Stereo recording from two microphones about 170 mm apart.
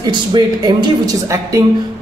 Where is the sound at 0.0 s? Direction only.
25° right (ahead or behind).